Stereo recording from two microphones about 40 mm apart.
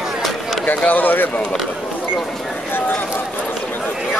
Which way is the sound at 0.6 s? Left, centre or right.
Left.